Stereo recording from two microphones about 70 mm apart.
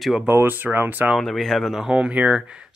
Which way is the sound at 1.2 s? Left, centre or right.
Centre.